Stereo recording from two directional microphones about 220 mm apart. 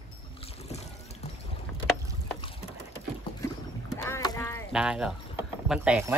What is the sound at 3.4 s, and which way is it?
Rowboat, 15° left (ahead or behind).